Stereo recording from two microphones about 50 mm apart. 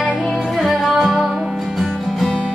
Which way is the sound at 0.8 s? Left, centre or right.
Centre.